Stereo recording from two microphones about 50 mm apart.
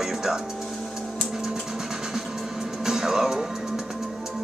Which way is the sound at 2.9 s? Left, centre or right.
Centre.